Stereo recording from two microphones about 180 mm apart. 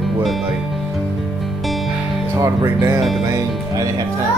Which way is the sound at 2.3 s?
15° right (ahead or behind).